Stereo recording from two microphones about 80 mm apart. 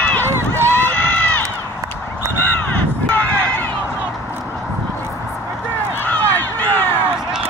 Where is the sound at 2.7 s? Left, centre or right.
Left.